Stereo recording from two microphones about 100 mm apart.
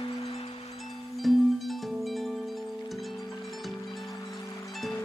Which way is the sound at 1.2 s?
Centre (ahead or behind).